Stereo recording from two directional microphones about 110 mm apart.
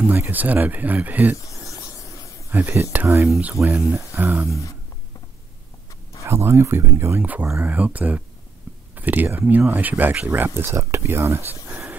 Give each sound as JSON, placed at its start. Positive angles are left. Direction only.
{"t": 0.0, "sound": "speech", "side_deg": -15}
{"t": 1.3, "sound": "a sound", "side_deg": 30}
{"t": 2.5, "sound": "speech", "side_deg": -15}
{"t": 3.3, "sound": "speech", "side_deg": -5}
{"t": 3.9, "sound": "speech", "side_deg": -20}
{"t": 6.2, "sound": "speech", "side_deg": -25}